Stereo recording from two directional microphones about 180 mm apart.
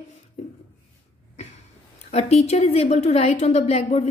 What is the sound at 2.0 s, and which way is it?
A woman's voice, 35° left (ahead or behind).